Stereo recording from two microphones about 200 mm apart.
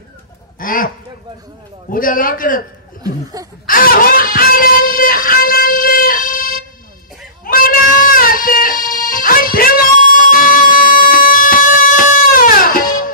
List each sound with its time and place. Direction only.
0.6 s a man's voice: 45° left (ahead or behind)
3.0 s a sound: 15° right (ahead or behind)
3.6 s music: 45° left (ahead or behind)